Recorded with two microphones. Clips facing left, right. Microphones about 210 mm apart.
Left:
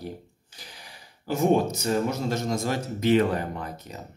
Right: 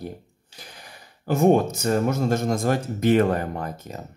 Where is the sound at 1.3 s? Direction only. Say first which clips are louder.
Right 4 dB; 50° right (ahead or behind).